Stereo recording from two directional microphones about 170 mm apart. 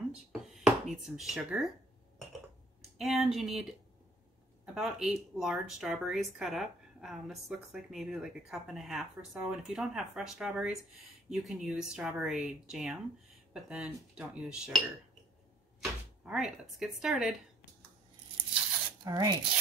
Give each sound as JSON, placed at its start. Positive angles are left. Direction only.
{"t": 0.1, "sound": "a sound", "side_deg": 0}
{"t": 3.0, "sound": "speech", "side_deg": 0}
{"t": 4.7, "sound": "speech", "side_deg": 0}
{"t": 15.8, "sound": "speech", "side_deg": -5}
{"t": 19.0, "sound": "speech", "side_deg": -25}